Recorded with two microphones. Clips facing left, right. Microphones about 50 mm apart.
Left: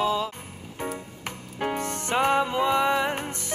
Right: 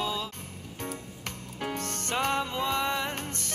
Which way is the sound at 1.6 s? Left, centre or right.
Centre.